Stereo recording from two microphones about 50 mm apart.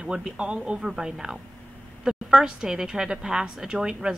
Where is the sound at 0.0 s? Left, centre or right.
Centre.